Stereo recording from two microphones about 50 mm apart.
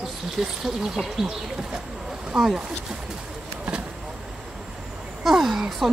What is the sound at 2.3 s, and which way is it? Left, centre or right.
Speech, centre.